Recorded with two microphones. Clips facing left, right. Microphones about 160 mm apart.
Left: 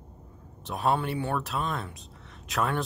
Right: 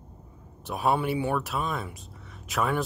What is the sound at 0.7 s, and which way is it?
Speech, 10° right (ahead or behind).